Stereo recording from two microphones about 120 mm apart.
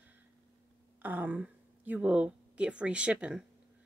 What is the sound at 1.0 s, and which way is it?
Speech, 15° right (ahead or behind).